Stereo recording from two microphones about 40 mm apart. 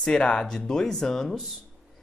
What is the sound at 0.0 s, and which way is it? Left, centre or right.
Speech, left.